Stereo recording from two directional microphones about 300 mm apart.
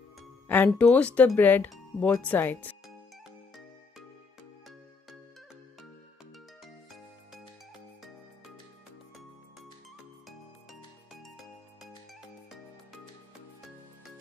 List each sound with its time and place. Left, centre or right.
0.5 s speech: centre